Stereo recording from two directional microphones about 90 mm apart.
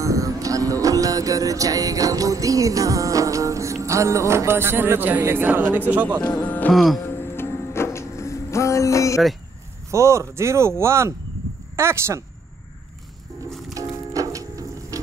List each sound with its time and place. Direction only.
0.0 s music: 40° right (ahead or behind)
5.7 s speech: 20° right (ahead or behind)
6.2 s speech: 20° left (ahead or behind)
6.7 s music: centre (ahead or behind)
7.2 s music: 25° left (ahead or behind)
9.8 s speech: 35° right (ahead or behind)
13.5 s music: 5° left (ahead or behind)
13.7 s music: 40° right (ahead or behind)